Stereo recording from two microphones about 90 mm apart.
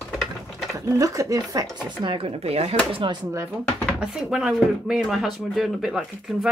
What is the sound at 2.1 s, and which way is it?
Speech, 90° right.